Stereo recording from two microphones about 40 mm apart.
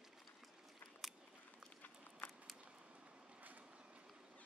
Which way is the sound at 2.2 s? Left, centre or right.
Left.